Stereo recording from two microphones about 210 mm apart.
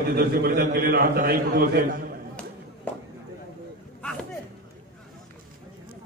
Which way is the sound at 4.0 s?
5° left (ahead or behind).